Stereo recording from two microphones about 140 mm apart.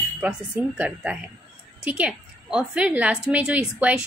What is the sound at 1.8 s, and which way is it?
A woman's voice, 10° right (ahead or behind).